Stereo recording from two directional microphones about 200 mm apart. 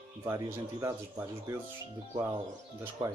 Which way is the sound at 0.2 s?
15° right (ahead or behind).